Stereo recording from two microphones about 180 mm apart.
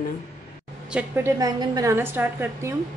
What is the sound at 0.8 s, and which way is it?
A woman's voice, 10° right (ahead or behind).